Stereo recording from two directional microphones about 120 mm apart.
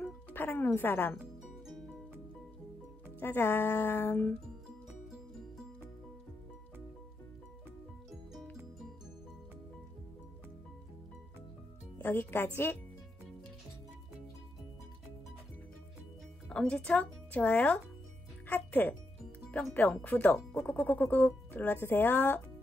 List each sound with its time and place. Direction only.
0.0 s speech: 15° left (ahead or behind)
3.2 s speech: 15° left (ahead or behind)
8.1 s music: centre (ahead or behind)
12.0 s speech: 15° left (ahead or behind)
16.4 s speech: 10° left (ahead or behind)